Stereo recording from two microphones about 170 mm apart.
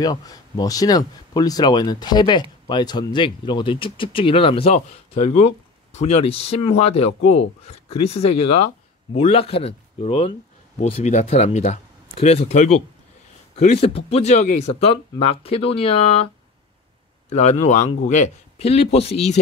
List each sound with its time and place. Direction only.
0.0 s speech: 20° left (ahead or behind)
17.3 s speech: 40° left (ahead or behind)